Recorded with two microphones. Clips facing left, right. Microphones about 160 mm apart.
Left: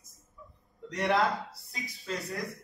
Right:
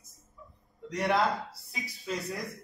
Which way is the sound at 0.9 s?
Centre (ahead or behind).